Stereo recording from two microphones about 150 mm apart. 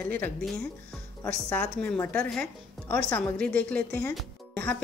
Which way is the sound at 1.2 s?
10° left (ahead or behind).